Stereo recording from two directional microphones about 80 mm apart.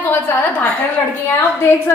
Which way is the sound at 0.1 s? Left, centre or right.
Left.